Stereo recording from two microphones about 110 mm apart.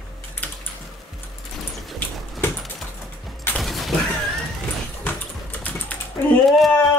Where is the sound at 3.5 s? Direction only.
Centre (ahead or behind).